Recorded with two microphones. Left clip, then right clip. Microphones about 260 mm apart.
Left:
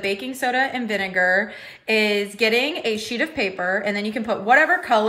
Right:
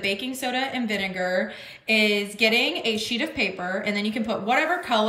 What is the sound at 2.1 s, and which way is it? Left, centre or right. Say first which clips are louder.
Speech: left 2 dB; centre.